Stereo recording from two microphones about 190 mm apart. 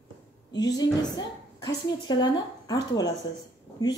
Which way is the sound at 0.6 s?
20° left (ahead or behind).